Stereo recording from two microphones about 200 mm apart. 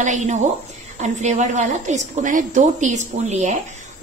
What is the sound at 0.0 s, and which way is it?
A woman's voice, 35° right (ahead or behind).